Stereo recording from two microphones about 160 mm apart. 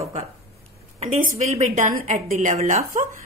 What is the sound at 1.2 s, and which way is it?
A woman's voice, 45° right (ahead or behind).